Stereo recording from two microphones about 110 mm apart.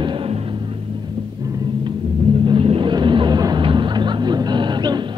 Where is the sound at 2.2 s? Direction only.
55° right (ahead or behind).